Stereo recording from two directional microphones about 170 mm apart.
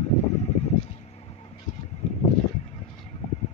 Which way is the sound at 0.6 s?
40° left (ahead or behind).